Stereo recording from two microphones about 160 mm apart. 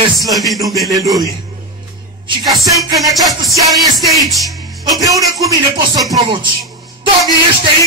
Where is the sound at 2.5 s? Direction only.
Centre (ahead or behind).